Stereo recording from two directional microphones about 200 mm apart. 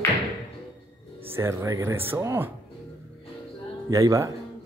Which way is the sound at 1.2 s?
10° right (ahead or behind).